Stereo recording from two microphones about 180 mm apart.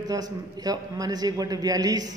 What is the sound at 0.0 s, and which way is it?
Speech, 20° right (ahead or behind).